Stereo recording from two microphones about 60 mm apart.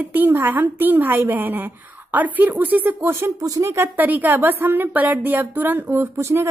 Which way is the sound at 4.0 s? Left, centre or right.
Right.